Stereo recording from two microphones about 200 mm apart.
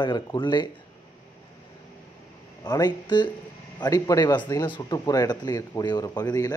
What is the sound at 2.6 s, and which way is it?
Speech, 20° left (ahead or behind).